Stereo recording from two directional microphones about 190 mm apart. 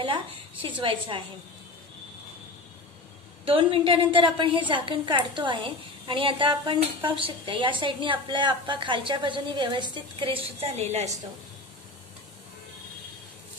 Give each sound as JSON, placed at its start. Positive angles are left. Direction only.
{"t": 0.0, "sound": "a woman's voice", "side_deg": -25}
{"t": 3.4, "sound": "a woman's voice", "side_deg": -30}